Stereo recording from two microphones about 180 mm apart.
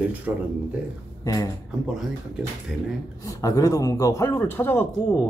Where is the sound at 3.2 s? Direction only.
20° left (ahead or behind).